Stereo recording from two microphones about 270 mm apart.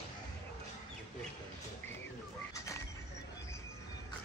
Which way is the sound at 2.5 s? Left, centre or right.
Centre.